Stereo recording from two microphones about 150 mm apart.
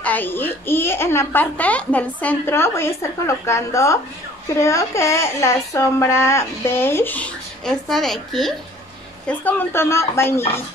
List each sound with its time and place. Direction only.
0.0 s speech: 10° left (ahead or behind)